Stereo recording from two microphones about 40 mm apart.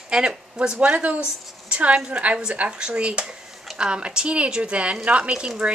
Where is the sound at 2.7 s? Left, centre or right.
Right.